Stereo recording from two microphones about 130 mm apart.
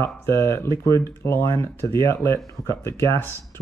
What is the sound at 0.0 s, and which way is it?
Speech, 20° left (ahead or behind).